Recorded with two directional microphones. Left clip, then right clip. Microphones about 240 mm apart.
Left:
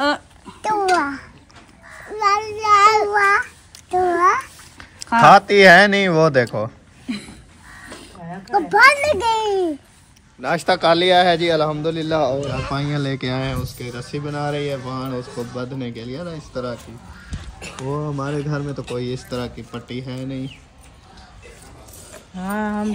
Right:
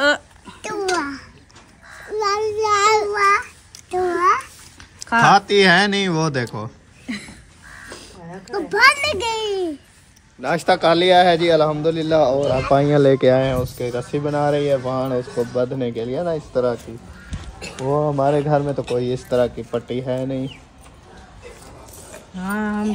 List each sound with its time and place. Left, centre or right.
0.0 s babbling: centre
0.6 s babbling: centre
2.1 s child singing: left
3.1 s babbling: centre
5.1 s speech: centre
8.5 s a child's voice: centre
10.4 s speech: centre
17.3 s crow: centre
18.3 s speech: centre
22.1 s a sound: centre